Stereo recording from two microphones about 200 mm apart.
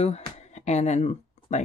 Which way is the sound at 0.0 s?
35° left (ahead or behind).